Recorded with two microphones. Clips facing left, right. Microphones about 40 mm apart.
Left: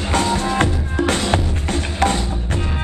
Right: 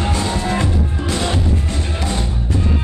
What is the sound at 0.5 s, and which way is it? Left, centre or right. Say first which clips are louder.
Music: left 2 dB; left.